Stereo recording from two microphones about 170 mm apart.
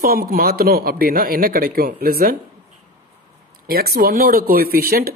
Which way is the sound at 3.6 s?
65° right (ahead or behind).